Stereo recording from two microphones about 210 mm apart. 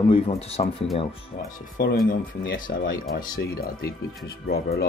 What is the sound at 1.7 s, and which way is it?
Speech, 45° left (ahead or behind).